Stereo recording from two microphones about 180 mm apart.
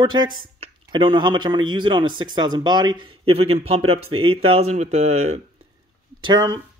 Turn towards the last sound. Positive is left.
turn(degrees=-25)  # may be behind; listen again after turning